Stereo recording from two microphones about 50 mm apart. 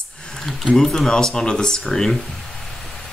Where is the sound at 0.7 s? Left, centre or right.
Centre.